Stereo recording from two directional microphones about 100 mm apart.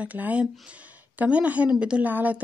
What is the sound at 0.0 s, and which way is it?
A woman's voice, 15° right (ahead or behind).